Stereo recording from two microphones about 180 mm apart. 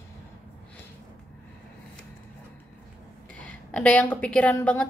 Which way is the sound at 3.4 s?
5° left (ahead or behind).